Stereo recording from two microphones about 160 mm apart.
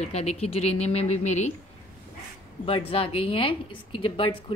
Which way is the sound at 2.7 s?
35° left (ahead or behind).